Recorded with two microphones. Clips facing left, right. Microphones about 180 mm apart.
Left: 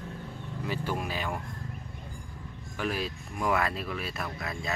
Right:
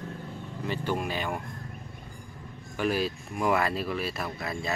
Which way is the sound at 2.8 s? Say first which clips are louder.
Right 5 dB; centre (ahead or behind).